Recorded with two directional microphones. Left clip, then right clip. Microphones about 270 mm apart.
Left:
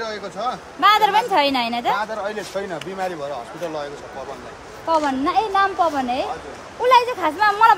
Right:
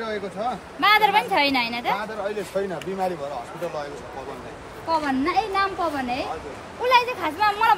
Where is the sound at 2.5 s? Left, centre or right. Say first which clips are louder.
Right 3 dB; left.